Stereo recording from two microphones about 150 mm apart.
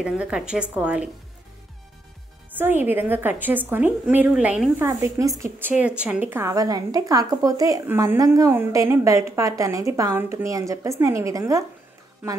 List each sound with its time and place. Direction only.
0.0 s a woman's voice: 5° right (ahead or behind)
2.5 s a woman's voice: 15° right (ahead or behind)